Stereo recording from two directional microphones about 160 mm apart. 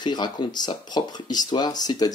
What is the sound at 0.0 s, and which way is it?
Speech, 30° left (ahead or behind).